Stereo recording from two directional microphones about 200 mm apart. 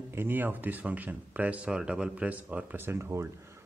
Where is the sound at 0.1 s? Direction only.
10° right (ahead or behind).